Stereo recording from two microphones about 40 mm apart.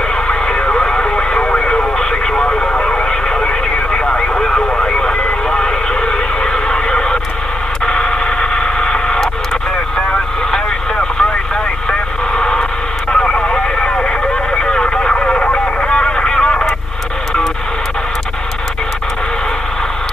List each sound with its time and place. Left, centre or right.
0.3 s a sound: left
4.4 s radio: centre
7.8 s vehicle: left